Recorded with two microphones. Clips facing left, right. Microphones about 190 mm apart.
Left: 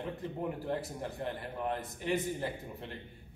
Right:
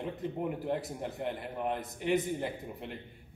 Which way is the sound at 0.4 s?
20° right (ahead or behind).